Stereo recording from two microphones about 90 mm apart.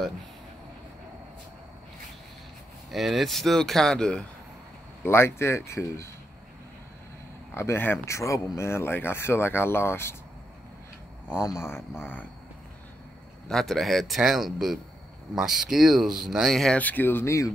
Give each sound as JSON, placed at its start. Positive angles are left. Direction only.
{"t": 2.9, "sound": "speech", "side_deg": 0}
{"t": 5.0, "sound": "speech", "side_deg": 25}
{"t": 7.5, "sound": "speech", "side_deg": 30}
{"t": 11.2, "sound": "speech", "side_deg": 30}
{"t": 13.5, "sound": "speech", "side_deg": 5}
{"t": 16.7, "sound": "speech", "side_deg": 20}